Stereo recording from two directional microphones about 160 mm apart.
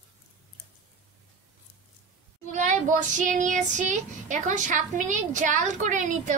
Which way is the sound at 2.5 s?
50° right (ahead or behind).